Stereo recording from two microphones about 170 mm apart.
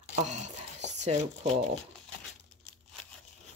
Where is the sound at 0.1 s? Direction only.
45° right (ahead or behind).